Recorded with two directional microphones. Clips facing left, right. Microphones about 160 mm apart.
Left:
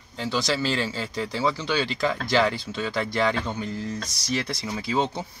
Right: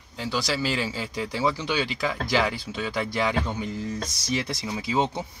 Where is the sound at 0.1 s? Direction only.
10° right (ahead or behind).